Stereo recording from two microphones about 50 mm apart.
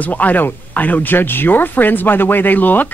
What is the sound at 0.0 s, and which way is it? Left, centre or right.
Speech, left.